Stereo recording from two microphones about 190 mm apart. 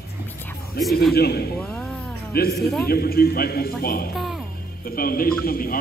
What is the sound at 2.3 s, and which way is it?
A man's voice, 55° left (ahead or behind).